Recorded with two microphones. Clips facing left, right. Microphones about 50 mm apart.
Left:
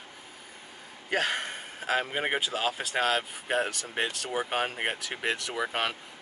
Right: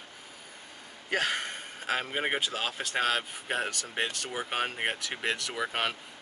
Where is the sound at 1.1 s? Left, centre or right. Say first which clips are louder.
Left 1 dB; centre.